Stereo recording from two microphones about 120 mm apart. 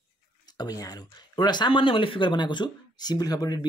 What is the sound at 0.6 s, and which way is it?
Speech, 30° left (ahead or behind).